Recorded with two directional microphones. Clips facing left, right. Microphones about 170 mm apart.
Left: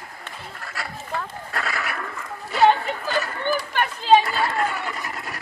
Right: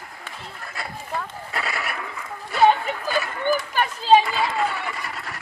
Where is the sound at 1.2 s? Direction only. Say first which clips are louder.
Even; 10° right (ahead or behind).